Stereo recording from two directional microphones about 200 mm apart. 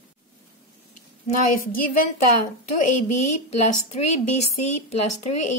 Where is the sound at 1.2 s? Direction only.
45° left (ahead or behind).